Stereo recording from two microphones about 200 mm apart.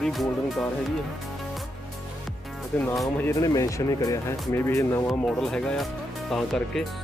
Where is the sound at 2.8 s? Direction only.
Centre (ahead or behind).